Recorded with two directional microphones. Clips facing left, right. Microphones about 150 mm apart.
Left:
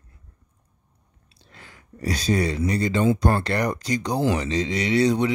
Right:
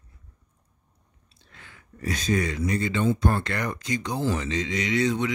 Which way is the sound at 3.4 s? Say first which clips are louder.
Left 5 dB; 35° left (ahead or behind).